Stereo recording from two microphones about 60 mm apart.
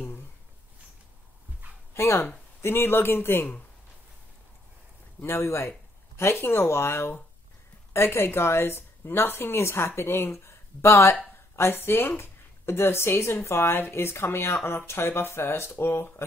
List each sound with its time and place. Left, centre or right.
2.0 s speech: left
5.2 s speech: left